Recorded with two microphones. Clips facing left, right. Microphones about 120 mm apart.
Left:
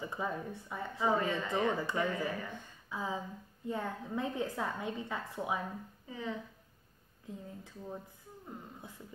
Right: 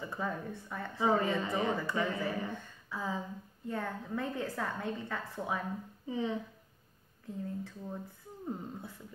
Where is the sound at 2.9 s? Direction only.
15° left (ahead or behind).